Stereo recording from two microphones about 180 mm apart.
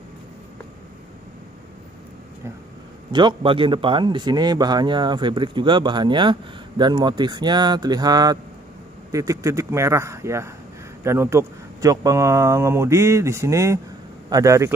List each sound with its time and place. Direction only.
3.1 s a man's voice: 25° right (ahead or behind)